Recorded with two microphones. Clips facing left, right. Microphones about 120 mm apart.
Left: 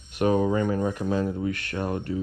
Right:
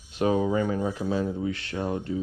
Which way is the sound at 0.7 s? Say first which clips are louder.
Left 2 dB; 55° left (ahead or behind).